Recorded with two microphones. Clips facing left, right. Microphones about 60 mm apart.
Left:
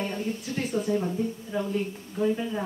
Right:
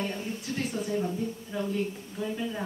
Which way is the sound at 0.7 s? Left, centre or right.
Centre.